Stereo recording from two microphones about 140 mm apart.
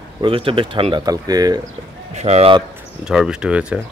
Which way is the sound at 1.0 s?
25° right (ahead or behind).